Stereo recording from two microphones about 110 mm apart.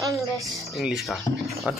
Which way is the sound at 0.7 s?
Centre (ahead or behind).